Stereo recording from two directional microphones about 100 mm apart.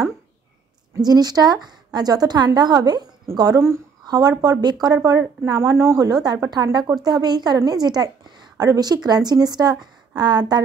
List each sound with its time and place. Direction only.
0.9 s a woman's voice: 40° right (ahead or behind)
5.6 s a woman's voice: 30° right (ahead or behind); by 10.6 s 45° right (ahead or behind)